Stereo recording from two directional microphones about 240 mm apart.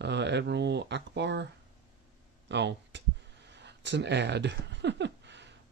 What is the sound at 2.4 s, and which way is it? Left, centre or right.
Speech, right.